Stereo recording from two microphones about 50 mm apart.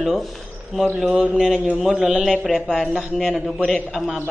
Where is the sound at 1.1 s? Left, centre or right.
Centre.